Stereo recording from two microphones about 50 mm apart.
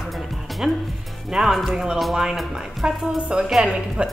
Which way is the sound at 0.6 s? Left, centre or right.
Centre.